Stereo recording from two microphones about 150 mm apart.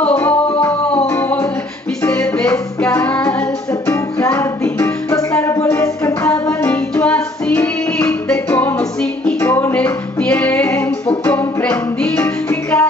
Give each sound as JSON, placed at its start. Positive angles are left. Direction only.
{"t": 0.0, "sound": "music", "side_deg": 10}